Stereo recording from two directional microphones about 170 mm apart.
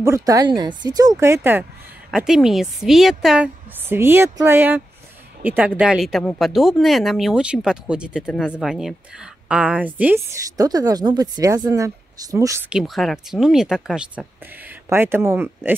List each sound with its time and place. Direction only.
0.0 s speech: 20° right (ahead or behind); by 3.4 s centre (ahead or behind)
3.9 s speech: 15° right (ahead or behind)
10.6 s speech: 20° right (ahead or behind)
12.6 s speech: 5° right (ahead or behind)